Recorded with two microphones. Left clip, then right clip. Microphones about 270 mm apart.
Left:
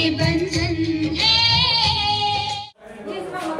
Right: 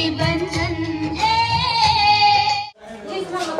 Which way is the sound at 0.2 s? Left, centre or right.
Centre.